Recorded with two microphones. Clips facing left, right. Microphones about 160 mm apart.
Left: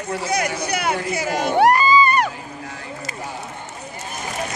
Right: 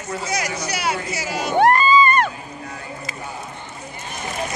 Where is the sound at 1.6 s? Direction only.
10° left (ahead or behind).